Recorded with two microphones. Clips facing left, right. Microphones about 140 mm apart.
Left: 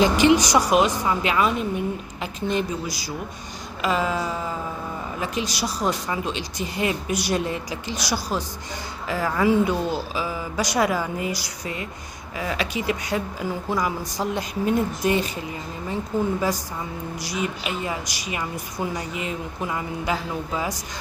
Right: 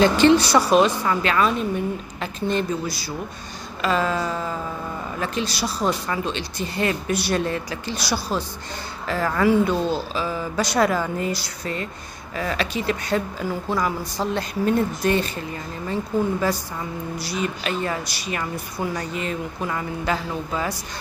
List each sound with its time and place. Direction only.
0.0 s speech: 15° left (ahead or behind)